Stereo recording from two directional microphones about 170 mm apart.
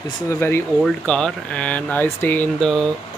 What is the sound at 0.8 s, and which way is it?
Speech, centre (ahead or behind).